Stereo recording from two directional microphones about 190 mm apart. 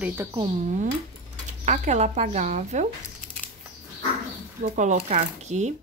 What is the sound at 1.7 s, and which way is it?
Speech, 35° right (ahead or behind).